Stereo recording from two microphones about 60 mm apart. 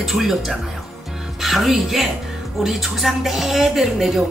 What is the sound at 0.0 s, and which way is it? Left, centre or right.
A woman's voice, centre.